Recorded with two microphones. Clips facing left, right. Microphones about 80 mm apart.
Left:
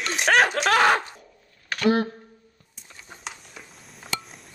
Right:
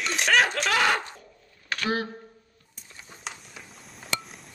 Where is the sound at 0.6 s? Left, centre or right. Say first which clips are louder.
Left 5 dB; left.